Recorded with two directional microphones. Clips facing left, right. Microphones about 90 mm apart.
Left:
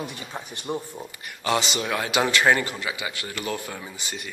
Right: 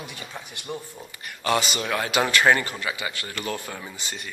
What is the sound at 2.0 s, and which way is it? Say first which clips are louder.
A man's voice: right 1 dB; 20° left (ahead or behind).